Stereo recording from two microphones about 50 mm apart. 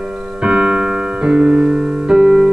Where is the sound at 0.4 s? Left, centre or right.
Centre.